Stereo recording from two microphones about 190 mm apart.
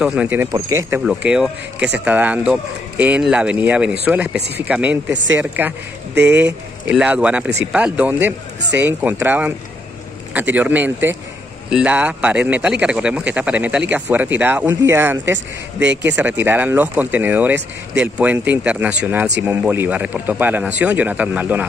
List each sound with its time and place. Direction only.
0.0 s speech: 5° right (ahead or behind)
6.9 s speech: 5° right (ahead or behind)
15.9 s speech: 70° right (ahead or behind)
16.2 s speech: 10° right (ahead or behind)